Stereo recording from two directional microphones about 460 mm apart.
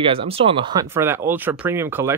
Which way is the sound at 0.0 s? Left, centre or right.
Centre.